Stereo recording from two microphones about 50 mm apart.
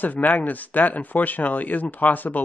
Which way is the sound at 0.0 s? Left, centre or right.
Left.